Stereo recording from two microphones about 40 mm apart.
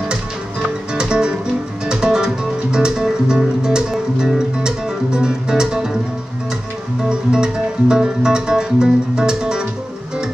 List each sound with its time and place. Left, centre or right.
0.9 s music: right
7.1 s music: centre